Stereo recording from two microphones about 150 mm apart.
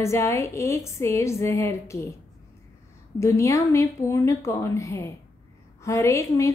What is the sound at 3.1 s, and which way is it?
Speech, 20° left (ahead or behind).